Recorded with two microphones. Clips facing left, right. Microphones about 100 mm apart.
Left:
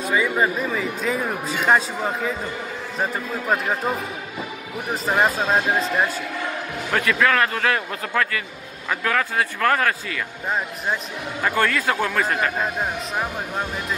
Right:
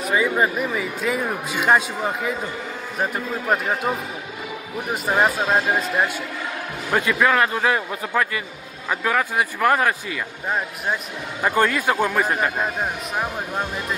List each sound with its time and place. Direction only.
0.1 s speech: 15° right (ahead or behind)
3.0 s speech: 5° right (ahead or behind)
5.0 s speech: 5° right (ahead or behind)
6.9 s speech: 15° right (ahead or behind)
11.4 s speech: 15° right (ahead or behind)